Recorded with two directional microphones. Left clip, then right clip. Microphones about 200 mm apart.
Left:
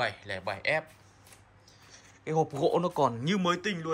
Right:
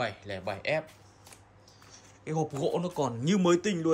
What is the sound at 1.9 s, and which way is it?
Speech, 10° right (ahead or behind).